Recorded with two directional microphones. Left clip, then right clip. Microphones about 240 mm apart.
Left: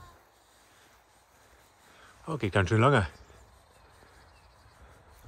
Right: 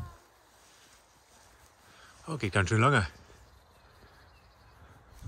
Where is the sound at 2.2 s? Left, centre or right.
Centre.